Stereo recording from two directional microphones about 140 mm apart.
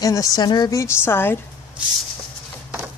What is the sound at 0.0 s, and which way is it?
A woman's voice, 25° left (ahead or behind).